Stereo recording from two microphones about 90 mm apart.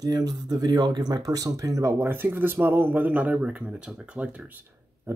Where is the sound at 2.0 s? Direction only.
25° right (ahead or behind).